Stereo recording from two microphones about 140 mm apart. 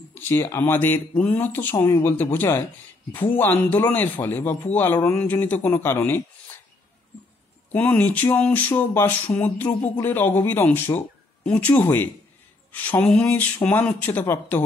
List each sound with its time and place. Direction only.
0.1 s speech: 15° left (ahead or behind)
7.7 s speech: 10° left (ahead or behind)